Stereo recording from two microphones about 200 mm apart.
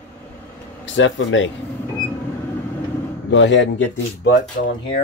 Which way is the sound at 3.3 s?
65° left (ahead or behind).